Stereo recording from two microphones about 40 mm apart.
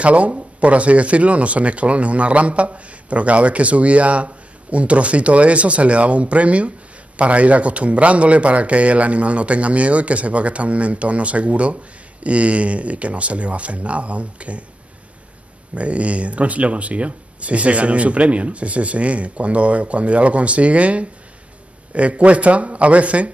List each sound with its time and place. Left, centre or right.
0.0 s a man's voice: right
15.7 s a man's voice: right